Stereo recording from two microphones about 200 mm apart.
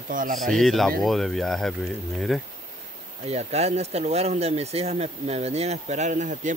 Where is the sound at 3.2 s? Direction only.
30° right (ahead or behind).